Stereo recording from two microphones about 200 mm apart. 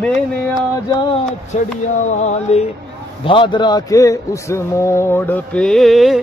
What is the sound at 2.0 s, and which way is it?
Music, 35° left (ahead or behind).